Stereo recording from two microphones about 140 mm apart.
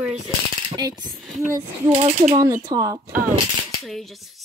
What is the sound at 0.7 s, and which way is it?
Speech, 30° right (ahead or behind).